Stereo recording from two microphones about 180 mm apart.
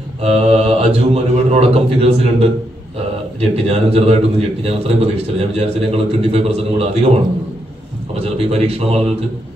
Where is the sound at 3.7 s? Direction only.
35° right (ahead or behind).